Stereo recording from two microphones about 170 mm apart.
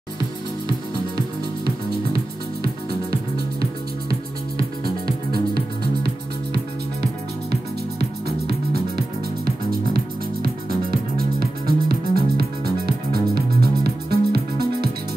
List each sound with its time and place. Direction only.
2.6 s music: 65° right (ahead or behind)
6.0 s music: 70° right (ahead or behind)